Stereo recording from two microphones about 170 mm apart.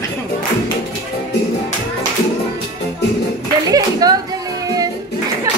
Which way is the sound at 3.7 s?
20° right (ahead or behind).